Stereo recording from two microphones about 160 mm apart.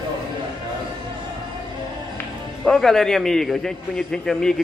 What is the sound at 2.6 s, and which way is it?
A man's voice, centre (ahead or behind).